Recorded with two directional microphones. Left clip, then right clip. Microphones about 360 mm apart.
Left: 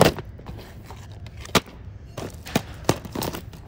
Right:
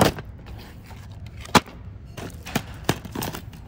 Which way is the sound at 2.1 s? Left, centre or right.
Centre.